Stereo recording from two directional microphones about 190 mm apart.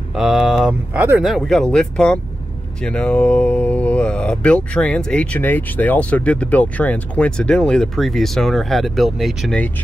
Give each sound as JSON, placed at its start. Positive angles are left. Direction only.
{"t": 0.1, "sound": "speech", "side_deg": 0}
{"t": 1.2, "sound": "speech", "side_deg": 0}